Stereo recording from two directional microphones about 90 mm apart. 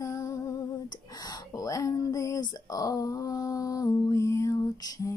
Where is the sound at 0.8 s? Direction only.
50° left (ahead or behind).